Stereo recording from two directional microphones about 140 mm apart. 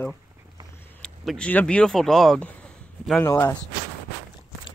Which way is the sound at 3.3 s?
20° left (ahead or behind).